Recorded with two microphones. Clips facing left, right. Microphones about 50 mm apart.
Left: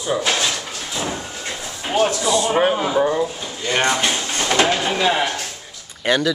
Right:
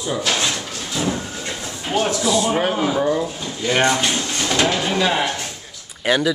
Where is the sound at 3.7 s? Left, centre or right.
Centre.